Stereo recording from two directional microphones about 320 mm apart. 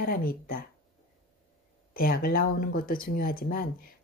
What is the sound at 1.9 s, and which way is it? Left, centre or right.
Speech, left.